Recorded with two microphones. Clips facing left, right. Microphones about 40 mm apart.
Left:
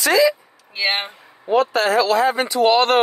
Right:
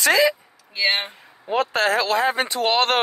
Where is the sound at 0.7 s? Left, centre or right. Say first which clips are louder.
Even; centre.